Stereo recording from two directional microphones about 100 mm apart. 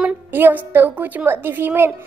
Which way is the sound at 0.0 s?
20° right (ahead or behind).